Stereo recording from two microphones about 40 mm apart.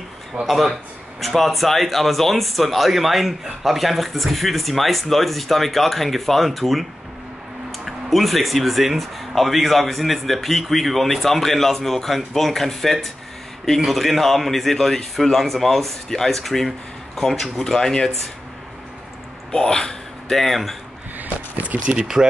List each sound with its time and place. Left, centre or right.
0.5 s speech: centre
19.5 s speech: centre
22.0 s speech: centre